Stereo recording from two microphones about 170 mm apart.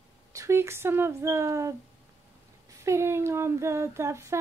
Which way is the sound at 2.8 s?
15° right (ahead or behind).